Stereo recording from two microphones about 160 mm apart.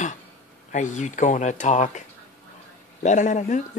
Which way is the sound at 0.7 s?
50° left (ahead or behind).